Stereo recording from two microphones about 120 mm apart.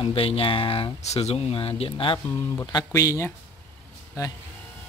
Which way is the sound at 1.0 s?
65° left (ahead or behind).